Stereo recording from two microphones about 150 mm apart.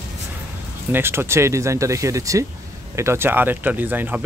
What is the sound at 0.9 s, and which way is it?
Speech, 15° right (ahead or behind).